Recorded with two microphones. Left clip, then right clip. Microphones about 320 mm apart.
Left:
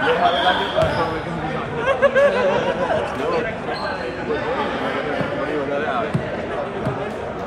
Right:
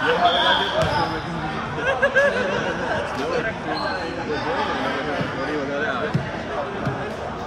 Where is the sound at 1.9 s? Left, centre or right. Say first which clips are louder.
Left 3 dB; centre.